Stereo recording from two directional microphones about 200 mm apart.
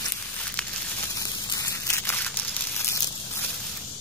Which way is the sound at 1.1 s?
15° left (ahead or behind).